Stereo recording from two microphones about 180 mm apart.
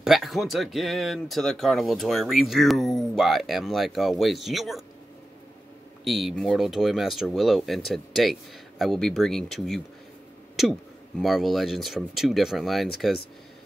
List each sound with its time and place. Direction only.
0.0 s speech: centre (ahead or behind)
6.0 s speech: centre (ahead or behind)